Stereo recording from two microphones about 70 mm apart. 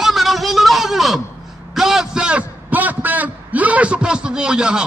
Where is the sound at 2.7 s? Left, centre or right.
Right.